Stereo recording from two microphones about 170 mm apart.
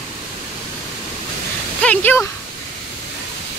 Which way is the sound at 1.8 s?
10° left (ahead or behind).